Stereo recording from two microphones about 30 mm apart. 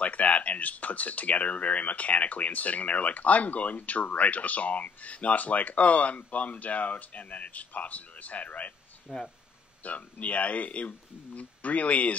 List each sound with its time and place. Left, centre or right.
0.0 s speech: left
9.1 s speech: centre
9.8 s speech: left